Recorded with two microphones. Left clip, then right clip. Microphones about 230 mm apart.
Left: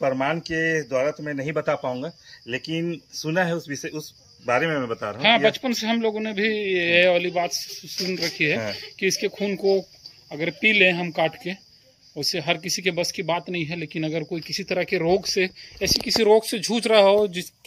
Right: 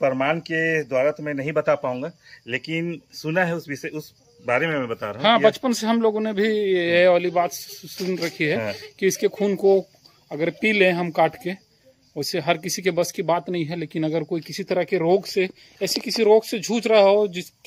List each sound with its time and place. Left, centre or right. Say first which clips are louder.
0.0 s a man's voice: right 2 dB; centre
5.1 s a man's voice: right 2 dB; centre